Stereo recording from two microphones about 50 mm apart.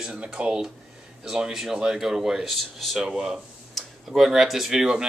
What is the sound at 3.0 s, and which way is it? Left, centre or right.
Speech, centre.